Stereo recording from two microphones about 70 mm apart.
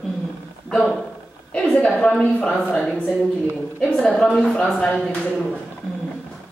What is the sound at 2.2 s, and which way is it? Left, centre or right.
Speech, centre.